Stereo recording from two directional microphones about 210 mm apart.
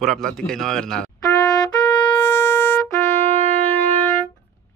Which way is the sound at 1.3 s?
15° left (ahead or behind).